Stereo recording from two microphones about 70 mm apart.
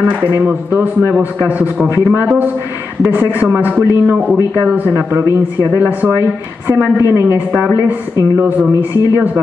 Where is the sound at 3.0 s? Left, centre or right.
Right.